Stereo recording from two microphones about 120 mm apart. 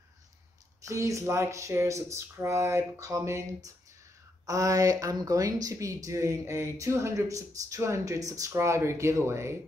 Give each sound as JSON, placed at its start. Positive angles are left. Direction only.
{"t": 0.8, "sound": "speech", "side_deg": -25}